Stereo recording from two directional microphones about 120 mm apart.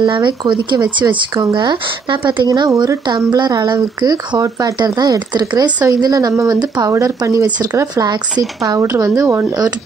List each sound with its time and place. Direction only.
0.0 s speech: 40° right (ahead or behind)